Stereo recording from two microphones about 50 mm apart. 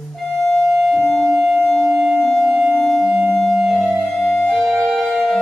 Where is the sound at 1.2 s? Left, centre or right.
Centre.